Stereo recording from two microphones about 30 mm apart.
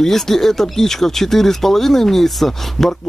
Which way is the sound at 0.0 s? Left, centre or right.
Centre.